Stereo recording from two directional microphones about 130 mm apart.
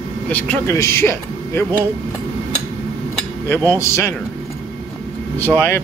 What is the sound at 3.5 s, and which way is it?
Speech, 20° left (ahead or behind).